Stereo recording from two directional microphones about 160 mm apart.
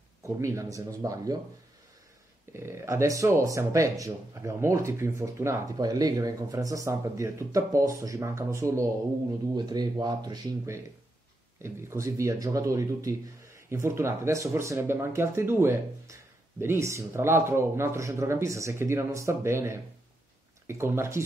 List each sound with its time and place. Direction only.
0.2 s speech: 20° right (ahead or behind)
2.5 s speech: 15° right (ahead or behind)